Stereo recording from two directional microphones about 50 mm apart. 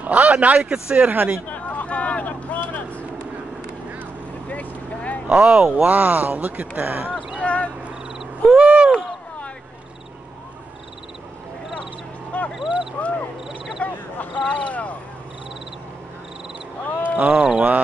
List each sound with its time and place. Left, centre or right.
0.0 s speech: right
0.6 s speech: centre
0.9 s speech: right
1.5 s vehicle: left
4.5 s vehicle: left
5.3 s speech: centre
5.9 s speech: right
7.3 s a sound: left
8.6 s a sound: right
12.3 s a sound: left
16.8 s a sound: left
17.3 s speech: centre